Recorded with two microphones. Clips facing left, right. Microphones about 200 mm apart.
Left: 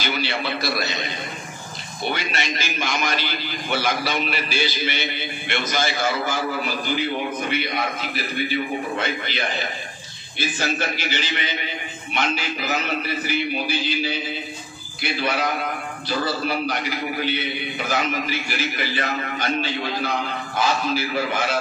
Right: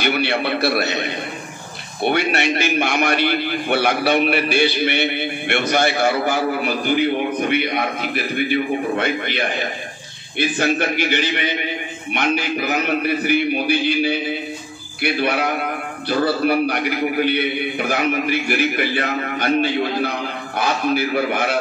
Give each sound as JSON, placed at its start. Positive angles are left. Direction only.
{"t": 0.0, "sound": "a man's voice", "side_deg": -60}
{"t": 10.4, "sound": "a man's voice", "side_deg": -60}